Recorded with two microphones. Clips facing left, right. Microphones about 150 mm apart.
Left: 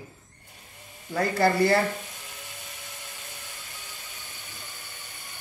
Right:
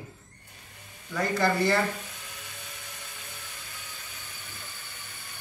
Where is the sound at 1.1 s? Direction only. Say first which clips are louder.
Left 3 dB; 35° left (ahead or behind).